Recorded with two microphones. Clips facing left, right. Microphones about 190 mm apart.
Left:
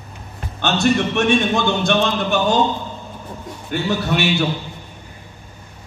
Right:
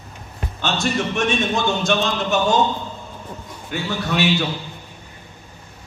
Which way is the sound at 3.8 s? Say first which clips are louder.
Left 1 dB; 60° left (ahead or behind).